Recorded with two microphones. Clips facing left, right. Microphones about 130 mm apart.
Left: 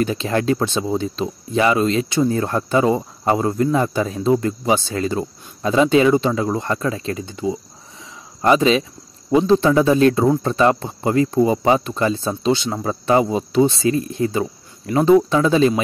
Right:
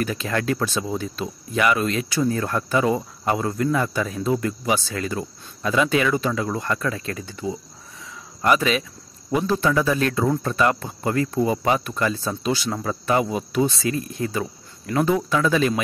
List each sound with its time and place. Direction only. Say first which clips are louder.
0.0 s speech: left 5 dB; 25° left (ahead or behind)